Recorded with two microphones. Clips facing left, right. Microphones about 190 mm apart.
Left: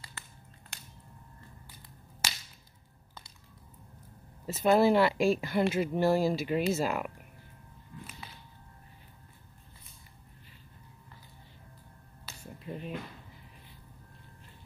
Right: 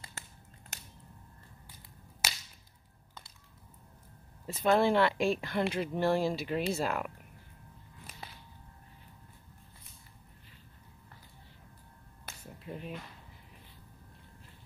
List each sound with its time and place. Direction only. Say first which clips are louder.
0.2 s a sound: even; 45° right (ahead or behind)
4.5 s speech: left 3 dB; 5° left (ahead or behind)
12.5 s finger snapping: left 2 dB; centre (ahead or behind)